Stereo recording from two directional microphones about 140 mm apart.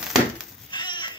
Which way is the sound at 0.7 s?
35° left (ahead or behind).